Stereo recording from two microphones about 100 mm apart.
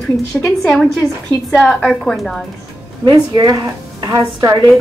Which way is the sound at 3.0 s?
40° right (ahead or behind).